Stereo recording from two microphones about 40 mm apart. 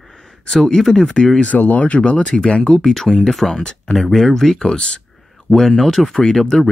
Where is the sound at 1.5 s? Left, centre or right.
Left.